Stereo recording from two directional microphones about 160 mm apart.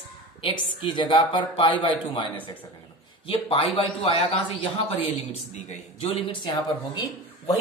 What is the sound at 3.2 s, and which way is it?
A man's voice, 35° left (ahead or behind).